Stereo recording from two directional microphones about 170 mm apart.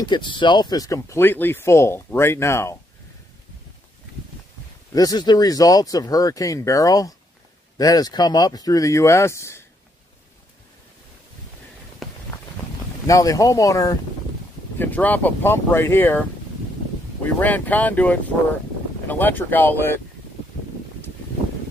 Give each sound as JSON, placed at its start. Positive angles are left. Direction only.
{"t": 0.1, "sound": "speech", "side_deg": 30}
{"t": 4.9, "sound": "speech", "side_deg": 25}
{"t": 12.0, "sound": "run", "side_deg": 0}
{"t": 13.0, "sound": "speech", "side_deg": 20}